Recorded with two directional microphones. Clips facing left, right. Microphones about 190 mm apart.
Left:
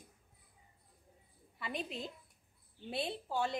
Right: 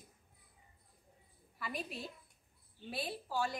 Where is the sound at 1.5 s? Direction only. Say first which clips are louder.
Left 2 dB; 25° left (ahead or behind).